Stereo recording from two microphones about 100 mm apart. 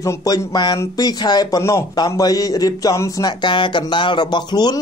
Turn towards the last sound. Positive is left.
turn(degrees=45)  # may be behind; listen again after turning